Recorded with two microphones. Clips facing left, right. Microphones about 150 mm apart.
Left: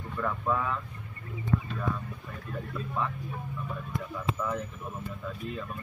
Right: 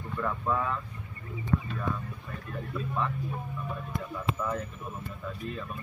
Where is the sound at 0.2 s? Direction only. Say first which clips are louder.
Even; centre (ahead or behind).